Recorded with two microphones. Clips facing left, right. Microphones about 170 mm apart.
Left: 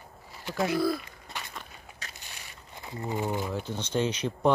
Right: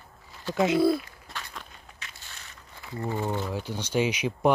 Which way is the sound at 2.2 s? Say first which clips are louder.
Left 1 dB; 15° left (ahead or behind).